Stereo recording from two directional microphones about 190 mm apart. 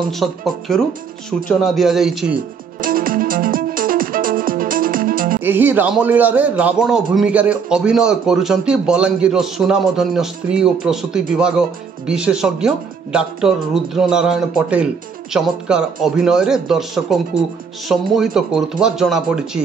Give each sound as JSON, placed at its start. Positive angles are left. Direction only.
{"t": 0.1, "sound": "a man's voice", "side_deg": 0}
{"t": 2.8, "sound": "music", "side_deg": -50}
{"t": 5.4, "sound": "a man's voice", "side_deg": -10}